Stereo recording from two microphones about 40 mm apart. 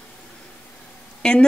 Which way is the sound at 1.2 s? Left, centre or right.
Centre.